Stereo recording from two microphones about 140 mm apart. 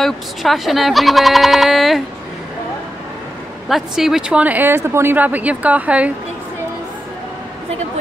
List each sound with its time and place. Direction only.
0.0 s speech: centre (ahead or behind)
3.6 s speech: centre (ahead or behind)